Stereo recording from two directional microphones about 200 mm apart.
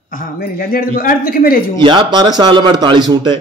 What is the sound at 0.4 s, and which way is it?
Speech, 50° left (ahead or behind).